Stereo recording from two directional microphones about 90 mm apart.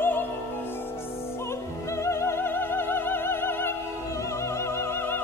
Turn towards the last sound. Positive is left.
turn(degrees=25)  # may be behind; listen again after turning